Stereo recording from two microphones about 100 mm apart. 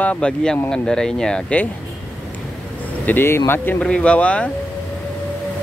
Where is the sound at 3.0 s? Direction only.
20° left (ahead or behind).